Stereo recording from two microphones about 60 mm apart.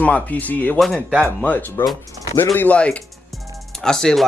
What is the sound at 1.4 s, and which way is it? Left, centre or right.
Speech, left.